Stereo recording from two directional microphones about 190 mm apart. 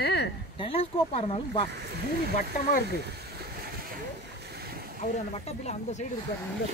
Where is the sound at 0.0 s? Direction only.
60° left (ahead or behind).